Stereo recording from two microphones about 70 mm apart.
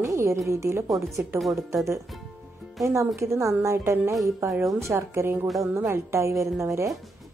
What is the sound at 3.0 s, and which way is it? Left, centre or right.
A woman's voice, right.